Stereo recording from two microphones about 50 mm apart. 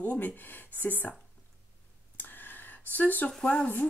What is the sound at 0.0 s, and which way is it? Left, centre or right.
Speech, left.